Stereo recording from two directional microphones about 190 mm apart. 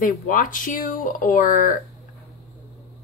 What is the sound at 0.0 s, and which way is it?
A woman's voice, 45° left (ahead or behind).